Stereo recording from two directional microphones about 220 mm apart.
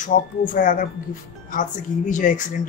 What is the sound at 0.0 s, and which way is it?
Speech, 35° left (ahead or behind).